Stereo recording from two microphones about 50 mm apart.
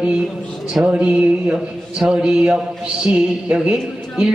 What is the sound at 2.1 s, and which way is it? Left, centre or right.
A woman's voice, centre.